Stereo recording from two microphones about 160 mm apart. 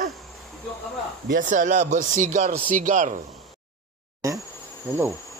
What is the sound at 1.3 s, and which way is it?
Speech, 55° right (ahead or behind).